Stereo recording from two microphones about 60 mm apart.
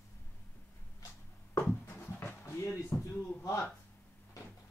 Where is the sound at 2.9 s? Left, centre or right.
Left.